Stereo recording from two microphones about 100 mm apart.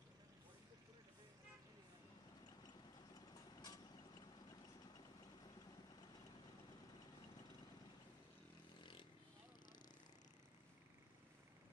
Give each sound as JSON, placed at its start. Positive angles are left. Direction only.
{"t": 3.3, "sound": "vehicle", "side_deg": 35}